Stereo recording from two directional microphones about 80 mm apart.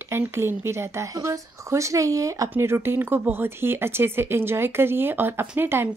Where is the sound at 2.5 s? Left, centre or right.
Right.